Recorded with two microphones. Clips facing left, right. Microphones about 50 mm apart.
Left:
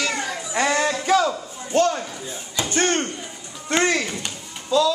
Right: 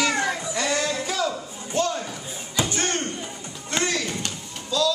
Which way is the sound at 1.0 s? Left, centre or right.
Left.